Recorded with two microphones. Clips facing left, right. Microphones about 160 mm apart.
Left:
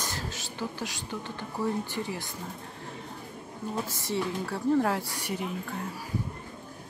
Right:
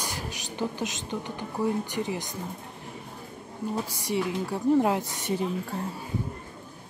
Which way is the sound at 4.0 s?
15° right (ahead or behind).